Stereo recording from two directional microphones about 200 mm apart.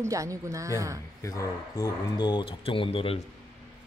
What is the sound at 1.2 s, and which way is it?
Speech, 15° left (ahead or behind).